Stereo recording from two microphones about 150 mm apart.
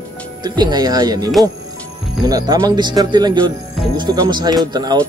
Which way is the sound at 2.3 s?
25° right (ahead or behind).